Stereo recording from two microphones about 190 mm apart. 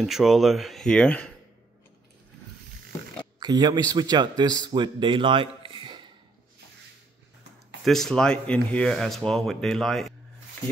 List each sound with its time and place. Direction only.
0.0 s speech: centre (ahead or behind)
3.3 s a man's voice: 20° right (ahead or behind)
7.8 s speech: centre (ahead or behind)
10.6 s a sound: 10° left (ahead or behind)